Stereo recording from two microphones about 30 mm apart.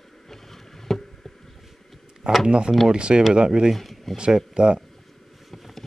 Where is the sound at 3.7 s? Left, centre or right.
Centre.